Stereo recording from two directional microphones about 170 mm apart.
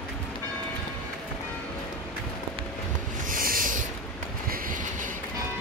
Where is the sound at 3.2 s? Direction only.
55° right (ahead or behind).